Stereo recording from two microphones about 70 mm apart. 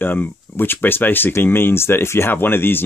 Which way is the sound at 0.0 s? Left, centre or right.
Left.